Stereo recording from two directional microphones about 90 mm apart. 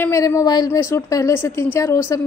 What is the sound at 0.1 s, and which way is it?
Speech, 35° left (ahead or behind).